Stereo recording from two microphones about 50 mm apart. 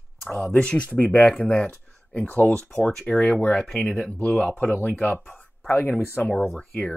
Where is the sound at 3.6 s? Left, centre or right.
Centre.